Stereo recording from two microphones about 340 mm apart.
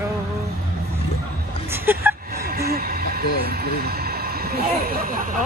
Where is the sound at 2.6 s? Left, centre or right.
Right.